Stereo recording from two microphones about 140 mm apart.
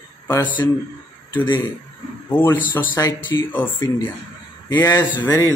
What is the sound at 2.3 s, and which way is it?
Speech, 15° left (ahead or behind).